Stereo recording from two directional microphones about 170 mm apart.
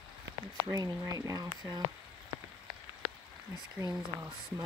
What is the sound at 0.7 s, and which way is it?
Speech, 25° right (ahead or behind).